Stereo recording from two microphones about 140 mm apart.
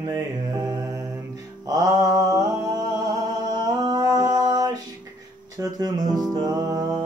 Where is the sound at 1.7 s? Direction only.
25° right (ahead or behind).